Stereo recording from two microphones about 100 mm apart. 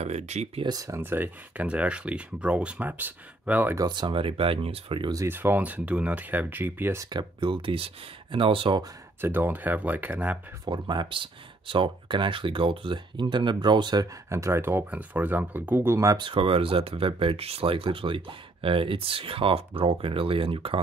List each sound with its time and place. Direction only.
0.0 s speech: 90° right
0.7 s speech: 35° right (ahead or behind)
1.0 s speech: 20° right (ahead or behind)
3.7 s speech: 45° right (ahead or behind); by 5.1 s 65° right (ahead or behind)
5.1 s speech: 25° right (ahead or behind)
7.1 s speech: 50° right (ahead or behind)
9.2 s speech: 20° right (ahead or behind)
10.6 s speech: 50° right (ahead or behind)
14.3 s speech: 25° right (ahead or behind)
16.2 s speech: 60° right (ahead or behind)